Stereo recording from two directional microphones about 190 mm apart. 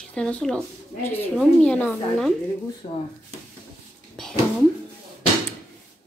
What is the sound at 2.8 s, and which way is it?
Speech, 30° left (ahead or behind).